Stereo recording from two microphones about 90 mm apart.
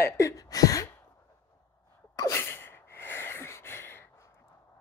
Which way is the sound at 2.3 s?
25° left (ahead or behind).